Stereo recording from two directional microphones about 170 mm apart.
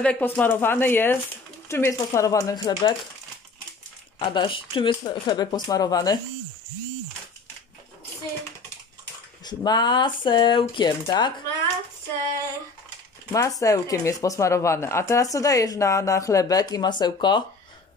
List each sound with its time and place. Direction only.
0.0 s speech: 10° left (ahead or behind)
4.2 s speech: 30° left (ahead or behind)
9.4 s speech: 25° left (ahead or behind)
13.3 s speech: 20° left (ahead or behind)